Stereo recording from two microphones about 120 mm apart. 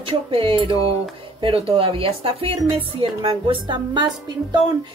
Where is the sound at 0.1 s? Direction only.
45° right (ahead or behind).